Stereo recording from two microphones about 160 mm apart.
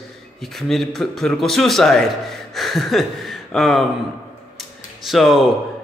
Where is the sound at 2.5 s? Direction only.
Centre (ahead or behind).